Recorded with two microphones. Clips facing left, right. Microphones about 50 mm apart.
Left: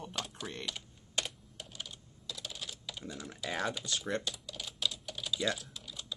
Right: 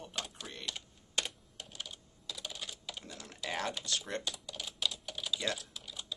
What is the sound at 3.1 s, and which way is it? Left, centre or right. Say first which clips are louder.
Speech: left 2 dB; centre.